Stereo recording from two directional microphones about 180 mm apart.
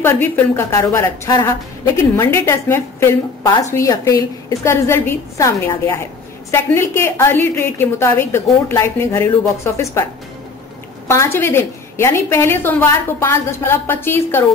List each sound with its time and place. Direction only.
0.0 s a woman's voice: 15° left (ahead or behind)
11.1 s a woman's voice: 15° left (ahead or behind)